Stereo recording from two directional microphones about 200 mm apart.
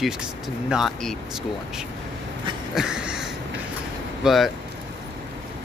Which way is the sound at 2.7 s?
5° right (ahead or behind).